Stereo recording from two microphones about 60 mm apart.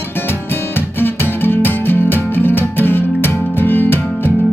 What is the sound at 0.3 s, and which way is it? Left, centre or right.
Music, left.